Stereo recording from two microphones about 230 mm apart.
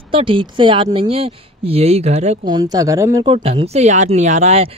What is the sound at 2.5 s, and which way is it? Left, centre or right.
Speech, centre.